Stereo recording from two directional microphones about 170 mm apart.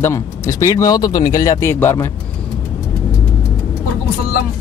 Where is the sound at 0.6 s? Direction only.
20° left (ahead or behind).